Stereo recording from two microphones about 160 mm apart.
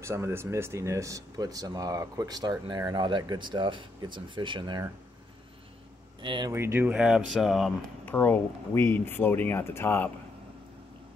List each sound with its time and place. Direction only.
0.0 s speech: 15° right (ahead or behind)
6.2 s speech: 30° right (ahead or behind)
6.5 s speech: 15° right (ahead or behind)
8.0 s speech: 10° left (ahead or behind)